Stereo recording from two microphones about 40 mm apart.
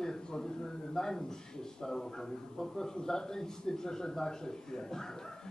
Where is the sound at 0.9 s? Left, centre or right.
Centre.